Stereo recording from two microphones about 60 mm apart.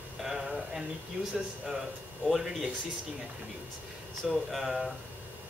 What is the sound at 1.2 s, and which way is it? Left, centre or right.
Speech, right.